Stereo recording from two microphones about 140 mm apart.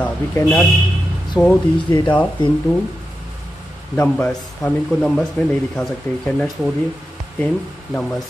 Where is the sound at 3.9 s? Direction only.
10° left (ahead or behind).